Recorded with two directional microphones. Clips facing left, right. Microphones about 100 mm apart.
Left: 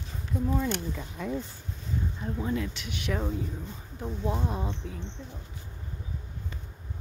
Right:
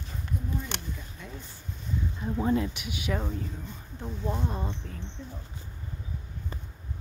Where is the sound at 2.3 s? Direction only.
30° right (ahead or behind).